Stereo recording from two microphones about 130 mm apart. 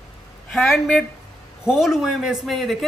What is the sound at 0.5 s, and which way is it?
Speech, centre (ahead or behind).